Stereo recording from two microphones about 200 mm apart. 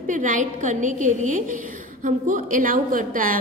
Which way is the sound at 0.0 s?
40° right (ahead or behind).